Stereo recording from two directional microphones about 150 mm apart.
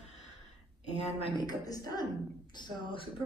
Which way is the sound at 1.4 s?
25° left (ahead or behind).